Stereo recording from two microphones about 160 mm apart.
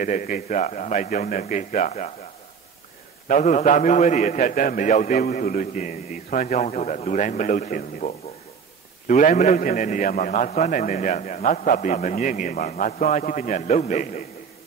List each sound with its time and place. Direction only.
0.0 s a man's voice: 55° left (ahead or behind)
3.3 s a man's voice: 50° left (ahead or behind)